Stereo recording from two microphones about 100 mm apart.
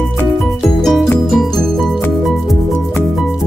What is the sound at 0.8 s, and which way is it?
Music, 5° left (ahead or behind).